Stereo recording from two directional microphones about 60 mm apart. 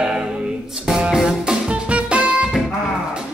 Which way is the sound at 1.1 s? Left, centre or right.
Centre.